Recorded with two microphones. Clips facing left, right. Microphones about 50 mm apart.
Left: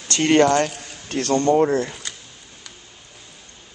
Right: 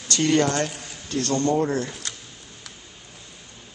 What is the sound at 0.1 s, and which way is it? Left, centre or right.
Speech, left.